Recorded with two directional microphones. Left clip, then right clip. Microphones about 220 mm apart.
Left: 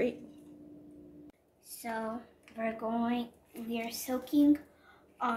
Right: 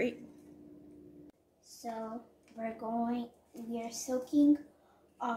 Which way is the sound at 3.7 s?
10° right (ahead or behind).